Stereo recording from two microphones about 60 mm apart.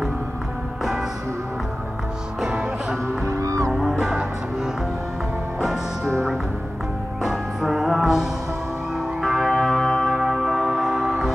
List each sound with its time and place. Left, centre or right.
3.3 s music: right
7.2 s music: centre